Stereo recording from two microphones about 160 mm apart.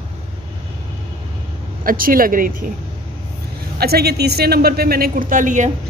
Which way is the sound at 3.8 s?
80° right.